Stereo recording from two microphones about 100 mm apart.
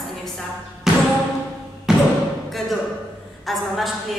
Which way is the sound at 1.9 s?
5° right (ahead or behind).